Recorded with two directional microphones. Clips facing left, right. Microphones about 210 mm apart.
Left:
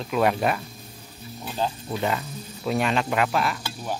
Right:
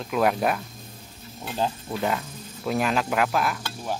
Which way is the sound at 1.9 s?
Centre (ahead or behind).